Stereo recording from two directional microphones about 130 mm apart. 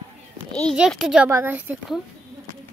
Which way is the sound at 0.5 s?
5° left (ahead or behind).